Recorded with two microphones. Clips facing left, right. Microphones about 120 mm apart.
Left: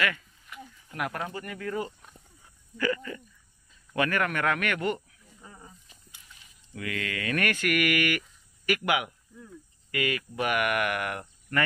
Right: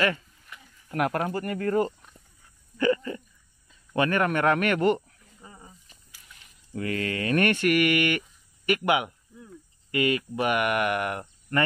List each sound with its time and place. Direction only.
0.9 s speech: 50° right (ahead or behind)
2.8 s speech: 30° right (ahead or behind)
4.9 s a sound: 15° right (ahead or behind)
6.7 s speech: 35° right (ahead or behind)